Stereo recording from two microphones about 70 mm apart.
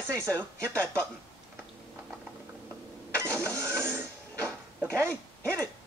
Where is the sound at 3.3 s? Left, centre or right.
Right.